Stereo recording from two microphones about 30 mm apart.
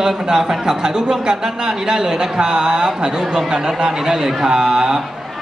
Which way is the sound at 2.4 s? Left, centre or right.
Right.